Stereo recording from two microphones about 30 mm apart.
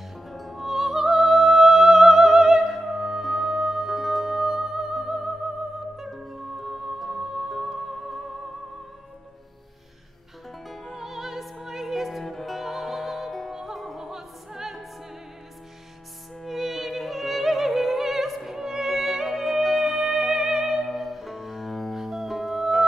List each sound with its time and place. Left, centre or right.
0.3 s music: centre
0.7 s music: centre
5.9 s music: centre
6.6 s music: centre
10.9 s opera: centre
12.3 s music: centre
12.5 s music: centre
13.9 s opera: centre
16.4 s music: centre
20.8 s music: centre